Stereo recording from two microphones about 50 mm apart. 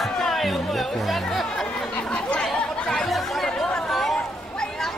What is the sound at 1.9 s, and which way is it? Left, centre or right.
Chatter, left.